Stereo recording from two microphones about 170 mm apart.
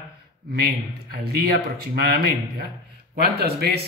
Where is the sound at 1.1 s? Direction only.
65° right (ahead or behind).